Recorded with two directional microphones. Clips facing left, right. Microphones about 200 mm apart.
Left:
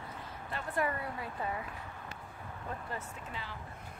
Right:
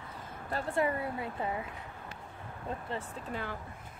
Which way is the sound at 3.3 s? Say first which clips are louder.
Right 8 dB; 50° right (ahead or behind).